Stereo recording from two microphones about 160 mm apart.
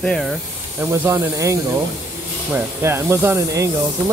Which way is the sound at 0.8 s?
15° right (ahead or behind).